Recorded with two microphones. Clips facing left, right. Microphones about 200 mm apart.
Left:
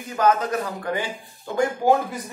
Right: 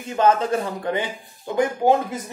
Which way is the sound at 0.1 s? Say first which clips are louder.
Right 2 dB; 25° right (ahead or behind).